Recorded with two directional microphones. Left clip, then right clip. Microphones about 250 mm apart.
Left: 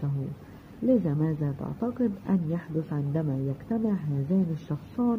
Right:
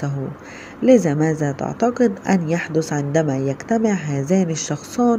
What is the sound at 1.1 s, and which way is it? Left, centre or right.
A woman's voice, centre.